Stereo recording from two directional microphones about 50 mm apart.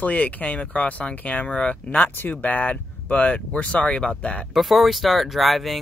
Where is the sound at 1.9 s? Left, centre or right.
Left.